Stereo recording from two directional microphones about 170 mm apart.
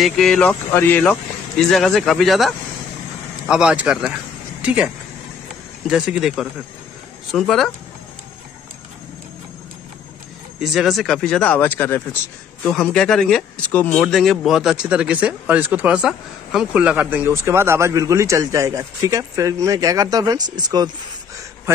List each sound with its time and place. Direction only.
0.0 s speech: 5° left (ahead or behind)
10.6 s speech: centre (ahead or behind); by 20.9 s 25° right (ahead or behind)